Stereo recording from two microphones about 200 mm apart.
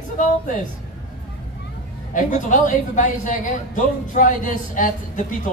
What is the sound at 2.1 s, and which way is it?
A man's voice, 40° left (ahead or behind).